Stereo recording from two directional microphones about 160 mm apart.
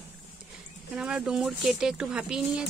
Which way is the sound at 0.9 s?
5° right (ahead or behind).